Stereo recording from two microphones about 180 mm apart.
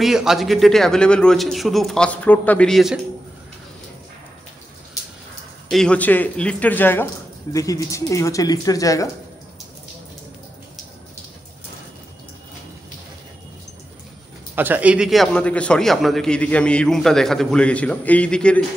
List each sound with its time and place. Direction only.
0.0 s a man's voice: centre (ahead or behind)
5.7 s speech: 5° left (ahead or behind)
14.5 s a man's voice: 10° right (ahead or behind); by 18.6 s 5° left (ahead or behind)